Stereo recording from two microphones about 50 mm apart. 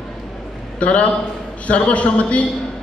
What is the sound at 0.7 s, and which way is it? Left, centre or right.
A man's voice, left.